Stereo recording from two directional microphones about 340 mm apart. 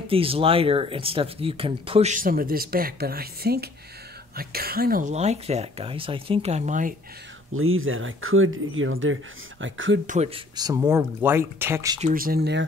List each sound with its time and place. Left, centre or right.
0.1 s speech: centre
7.5 s speech: right
10.0 s speech: centre
12.1 s speech: right